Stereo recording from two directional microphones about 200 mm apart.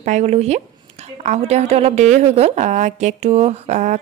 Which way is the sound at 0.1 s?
35° right (ahead or behind).